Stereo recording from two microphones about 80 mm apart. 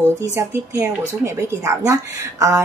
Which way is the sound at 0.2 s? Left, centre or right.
Right.